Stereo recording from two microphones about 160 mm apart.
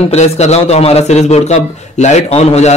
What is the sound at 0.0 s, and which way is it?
A man's voice, 40° left (ahead or behind).